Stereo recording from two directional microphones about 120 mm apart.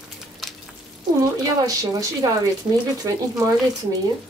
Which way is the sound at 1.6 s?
30° right (ahead or behind).